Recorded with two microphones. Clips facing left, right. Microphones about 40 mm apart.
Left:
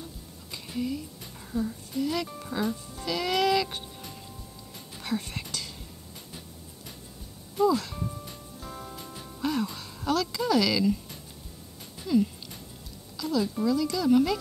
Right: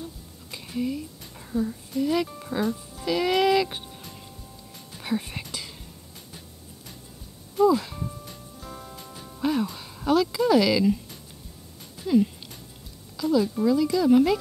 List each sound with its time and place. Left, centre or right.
0.0 s music: centre
2.2 s speech: centre
3.1 s speech: centre
5.0 s speech: centre
7.5 s music: centre
9.4 s music: centre
9.8 s speech: centre
13.2 s speech: centre